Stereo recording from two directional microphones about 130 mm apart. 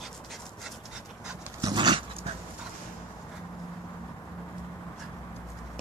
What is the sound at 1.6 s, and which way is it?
Dog, 35° right (ahead or behind).